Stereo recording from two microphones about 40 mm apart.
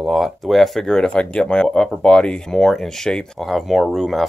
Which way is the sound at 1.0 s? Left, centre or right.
Left.